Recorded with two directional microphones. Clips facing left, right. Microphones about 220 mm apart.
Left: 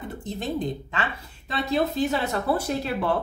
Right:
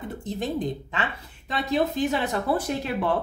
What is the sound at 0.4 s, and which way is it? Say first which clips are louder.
A woman's voice: even; 15° right (ahead or behind).